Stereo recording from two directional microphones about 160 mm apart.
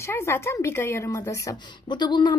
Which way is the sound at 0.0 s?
15° left (ahead or behind).